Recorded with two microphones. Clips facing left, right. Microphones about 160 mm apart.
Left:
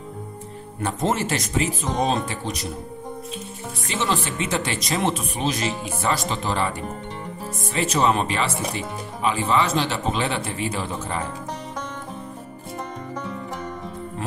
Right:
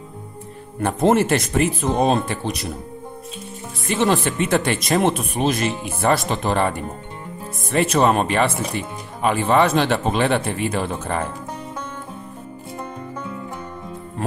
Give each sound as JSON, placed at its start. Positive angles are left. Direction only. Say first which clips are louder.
{"t": 0.7, "sound": "speech", "louder": "right 7 dB", "side_deg": -55}
{"t": 3.8, "sound": "speech", "louder": "right 6 dB", "side_deg": -55}
{"t": 7.7, "sound": "speech", "louder": "right 4 dB", "side_deg": -55}